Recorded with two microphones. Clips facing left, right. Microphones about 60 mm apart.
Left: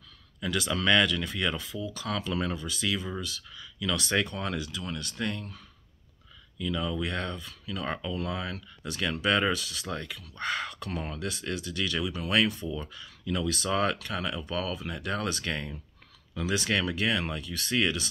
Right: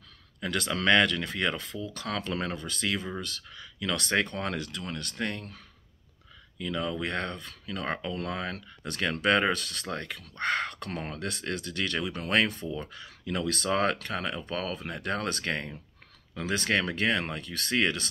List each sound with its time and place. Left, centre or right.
0.4 s speech: right
6.6 s speech: right